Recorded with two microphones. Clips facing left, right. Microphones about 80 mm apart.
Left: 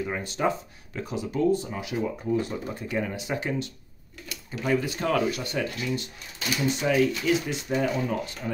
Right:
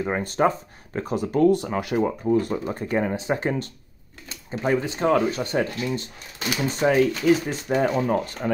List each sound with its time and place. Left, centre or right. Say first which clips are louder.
0.0 s speech: right 5 dB; right
4.3 s speech: right 3 dB; right